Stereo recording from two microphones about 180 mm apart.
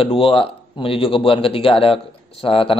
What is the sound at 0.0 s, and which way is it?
Speech, 30° left (ahead or behind).